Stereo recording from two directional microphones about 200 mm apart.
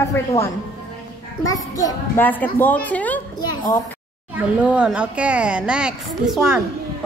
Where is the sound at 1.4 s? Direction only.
15° left (ahead or behind).